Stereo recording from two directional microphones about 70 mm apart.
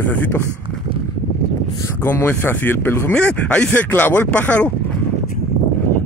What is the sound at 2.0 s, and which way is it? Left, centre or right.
Speech, left.